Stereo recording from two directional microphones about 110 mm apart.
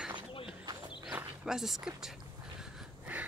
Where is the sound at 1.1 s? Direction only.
5° right (ahead or behind).